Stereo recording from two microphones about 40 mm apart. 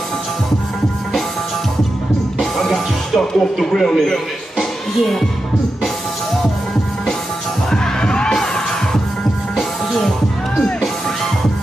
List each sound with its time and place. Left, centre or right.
2.6 s music: centre
7.7 s music: centre